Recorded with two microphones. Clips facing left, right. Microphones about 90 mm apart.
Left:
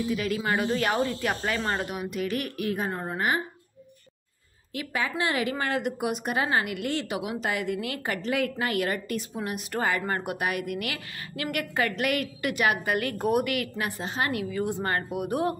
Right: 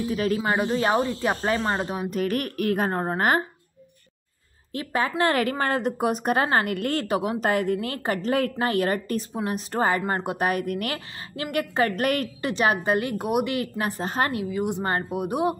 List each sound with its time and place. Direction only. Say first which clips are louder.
0.1 s speech: right 5 dB; 35° right (ahead or behind)
4.7 s a woman's voice: right 5 dB; 40° right (ahead or behind)
14.3 s a woman's voice: right 2 dB; 20° right (ahead or behind)